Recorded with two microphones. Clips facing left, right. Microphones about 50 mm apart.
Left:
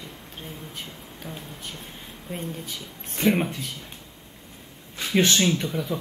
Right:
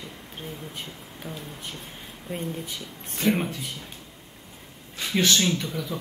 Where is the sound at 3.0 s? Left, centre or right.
Left.